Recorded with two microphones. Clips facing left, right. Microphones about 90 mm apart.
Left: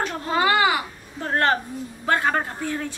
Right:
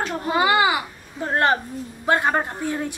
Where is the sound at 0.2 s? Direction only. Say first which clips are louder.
Right 1 dB; 15° right (ahead or behind).